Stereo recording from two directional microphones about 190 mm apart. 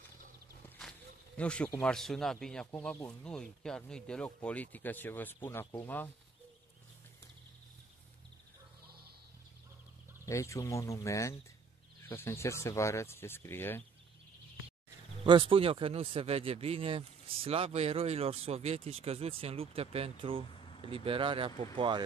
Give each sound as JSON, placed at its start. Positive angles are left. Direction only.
{"t": 0.7, "sound": "a man's voice", "side_deg": 5}
{"t": 10.2, "sound": "a man's voice", "side_deg": 15}
{"t": 15.2, "sound": "speech", "side_deg": -25}